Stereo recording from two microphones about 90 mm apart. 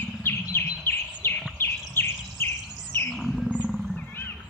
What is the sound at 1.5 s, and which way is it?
Bird, 25° left (ahead or behind).